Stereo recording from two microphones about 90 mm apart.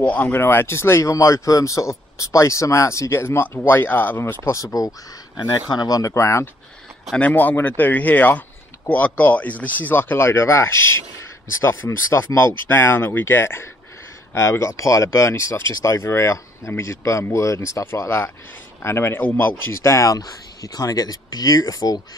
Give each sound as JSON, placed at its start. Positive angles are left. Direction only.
{"t": 0.0, "sound": "speech", "side_deg": 20}
{"t": 5.7, "sound": "speech", "side_deg": 45}
{"t": 7.2, "sound": "speech", "side_deg": 20}